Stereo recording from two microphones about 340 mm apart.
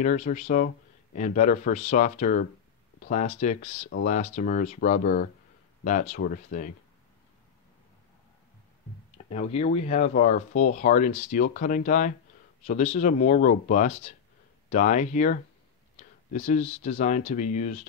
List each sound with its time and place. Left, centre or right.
0.0 s speech: left
9.3 s speech: centre